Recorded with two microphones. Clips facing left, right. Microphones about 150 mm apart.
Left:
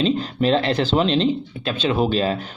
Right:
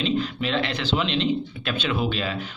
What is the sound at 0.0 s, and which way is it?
Speech, 40° left (ahead or behind).